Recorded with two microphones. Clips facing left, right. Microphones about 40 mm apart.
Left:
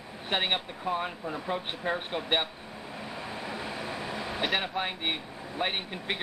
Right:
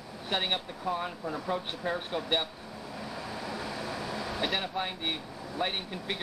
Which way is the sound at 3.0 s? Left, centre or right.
Left.